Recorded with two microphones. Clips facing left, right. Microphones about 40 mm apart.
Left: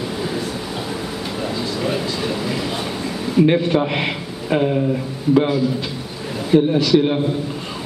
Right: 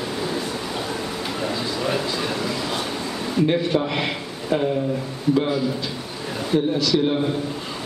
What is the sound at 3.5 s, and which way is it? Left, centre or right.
Speech, centre.